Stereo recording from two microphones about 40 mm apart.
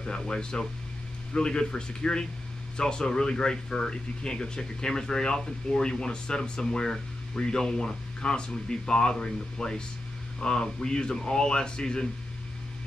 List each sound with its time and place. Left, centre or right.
0.3 s speech: centre